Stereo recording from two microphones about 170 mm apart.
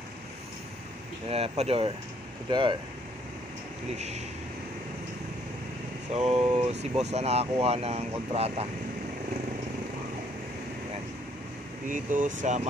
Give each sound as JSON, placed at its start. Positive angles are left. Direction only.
{"t": 1.3, "sound": "speech", "side_deg": -35}
{"t": 6.1, "sound": "speech", "side_deg": -35}
{"t": 11.9, "sound": "speech", "side_deg": -50}